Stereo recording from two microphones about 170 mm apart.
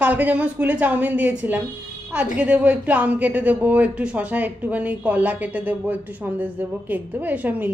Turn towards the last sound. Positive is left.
turn(degrees=-10)  # may be behind; listen again after turning